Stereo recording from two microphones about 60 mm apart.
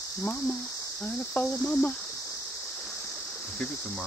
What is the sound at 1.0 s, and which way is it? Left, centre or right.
Cricket, left.